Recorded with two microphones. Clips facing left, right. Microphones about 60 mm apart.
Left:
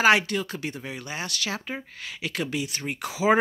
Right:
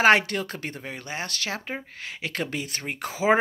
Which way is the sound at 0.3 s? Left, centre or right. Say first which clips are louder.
Left 1 dB; right.